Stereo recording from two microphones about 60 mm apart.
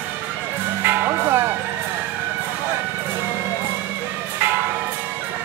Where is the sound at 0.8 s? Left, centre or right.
Right.